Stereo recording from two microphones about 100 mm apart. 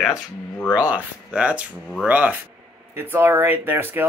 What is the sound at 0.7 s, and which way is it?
Speech, 15° right (ahead or behind).